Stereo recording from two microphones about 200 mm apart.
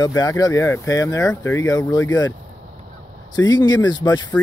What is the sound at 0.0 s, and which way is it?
Speech, 20° left (ahead or behind).